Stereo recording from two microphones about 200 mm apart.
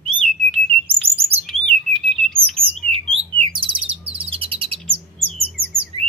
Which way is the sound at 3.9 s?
25° right (ahead or behind).